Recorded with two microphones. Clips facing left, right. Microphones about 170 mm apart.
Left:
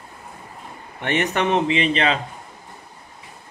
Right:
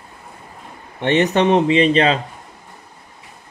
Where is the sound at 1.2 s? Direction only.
30° right (ahead or behind).